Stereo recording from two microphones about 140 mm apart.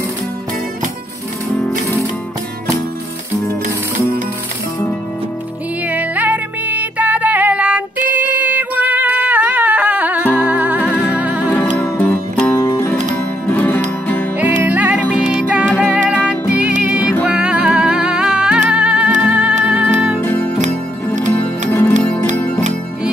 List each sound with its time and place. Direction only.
5.9 s music: 10° right (ahead or behind)
8.1 s a sound: 10° right (ahead or behind)
10.3 s music: 10° right (ahead or behind)
11.7 s music: 10° left (ahead or behind)
14.4 s music: 10° right (ahead or behind)
20.2 s music: 10° left (ahead or behind)
20.6 s music: 60° right (ahead or behind)
21.6 s music: 15° left (ahead or behind)